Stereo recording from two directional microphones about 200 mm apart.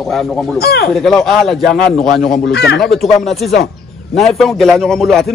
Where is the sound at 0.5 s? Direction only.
50° left (ahead or behind).